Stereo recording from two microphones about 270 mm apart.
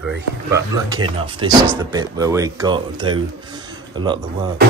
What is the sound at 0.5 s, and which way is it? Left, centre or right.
Speech, centre.